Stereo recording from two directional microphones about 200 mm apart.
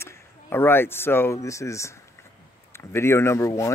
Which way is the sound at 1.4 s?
15° left (ahead or behind).